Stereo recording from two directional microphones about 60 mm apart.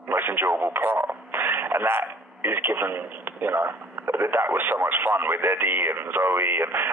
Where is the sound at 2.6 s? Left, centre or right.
Right.